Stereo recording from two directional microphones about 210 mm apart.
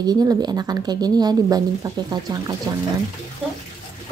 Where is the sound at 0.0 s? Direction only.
20° right (ahead or behind).